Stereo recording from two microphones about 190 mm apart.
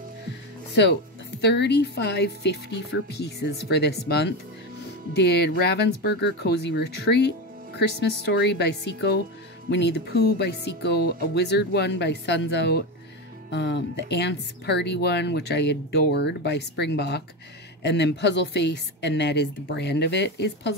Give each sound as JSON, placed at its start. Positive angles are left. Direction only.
{"t": 1.4, "sound": "speech", "side_deg": 65}